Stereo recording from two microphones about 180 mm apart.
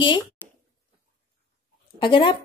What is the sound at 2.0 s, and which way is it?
Speech, 25° left (ahead or behind).